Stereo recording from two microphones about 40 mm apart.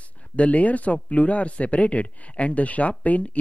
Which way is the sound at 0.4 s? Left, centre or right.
Left.